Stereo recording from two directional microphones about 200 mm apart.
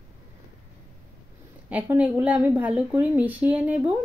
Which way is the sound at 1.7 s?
10° right (ahead or behind).